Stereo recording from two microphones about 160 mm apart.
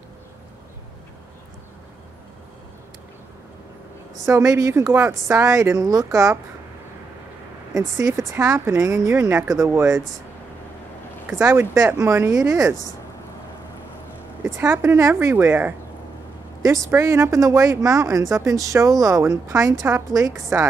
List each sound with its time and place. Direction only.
4.3 s a woman's voice: 20° right (ahead or behind)
7.7 s a woman's voice: 20° right (ahead or behind)
11.2 s a woman's voice: 15° right (ahead or behind)
14.4 s a woman's voice: 15° right (ahead or behind)
16.9 s a woman's voice: 15° right (ahead or behind)